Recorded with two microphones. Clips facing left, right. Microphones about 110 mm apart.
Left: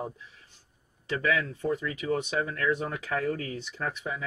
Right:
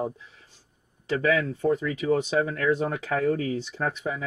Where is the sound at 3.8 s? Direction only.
35° right (ahead or behind).